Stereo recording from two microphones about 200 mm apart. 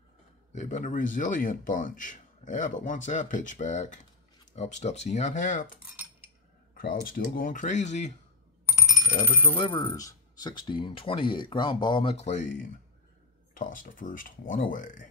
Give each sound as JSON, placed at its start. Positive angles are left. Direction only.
{"t": 0.5, "sound": "speech", "side_deg": 35}
{"t": 6.7, "sound": "speech", "side_deg": 50}
{"t": 9.1, "sound": "speech", "side_deg": 35}
{"t": 9.6, "sound": "speech", "side_deg": 20}
{"t": 13.6, "sound": "speech", "side_deg": 40}